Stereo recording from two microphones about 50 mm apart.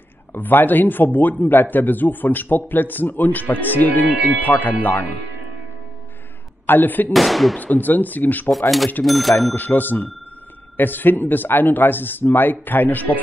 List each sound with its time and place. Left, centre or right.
0.3 s a man's voice: left
6.6 s a man's voice: left
7.1 s speech: centre
7.5 s a man's voice: left
8.5 s speech: centre
9.6 s a man's voice: left